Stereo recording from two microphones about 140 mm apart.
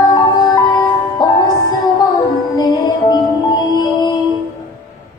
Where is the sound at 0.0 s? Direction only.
30° left (ahead or behind).